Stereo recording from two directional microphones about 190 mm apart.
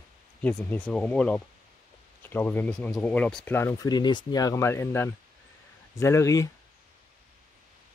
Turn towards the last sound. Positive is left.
turn(degrees=15)  # may be behind; listen again after turning